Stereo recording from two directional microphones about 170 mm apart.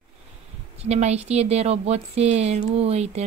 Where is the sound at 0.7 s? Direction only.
40° right (ahead or behind).